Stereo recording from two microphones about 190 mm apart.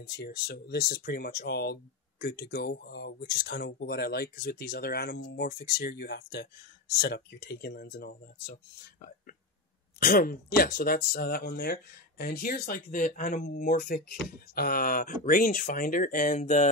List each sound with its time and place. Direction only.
0.1 s speech: 60° left (ahead or behind)
9.9 s speech: 50° left (ahead or behind)